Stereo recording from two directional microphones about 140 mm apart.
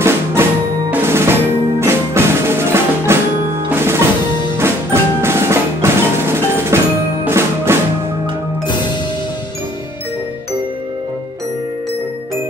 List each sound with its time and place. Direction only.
0.0 s music: 15° right (ahead or behind)
4.6 s percussion: 20° right (ahead or behind)
7.2 s music: 20° right (ahead or behind)